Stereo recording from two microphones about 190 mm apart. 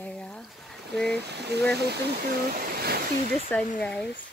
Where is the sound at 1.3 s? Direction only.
60° right (ahead or behind).